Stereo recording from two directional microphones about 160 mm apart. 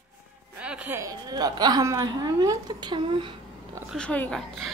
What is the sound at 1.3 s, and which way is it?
A woman's voice, 25° right (ahead or behind).